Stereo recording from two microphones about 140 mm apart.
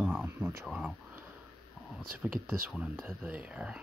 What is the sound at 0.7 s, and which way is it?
Speech, 5° right (ahead or behind).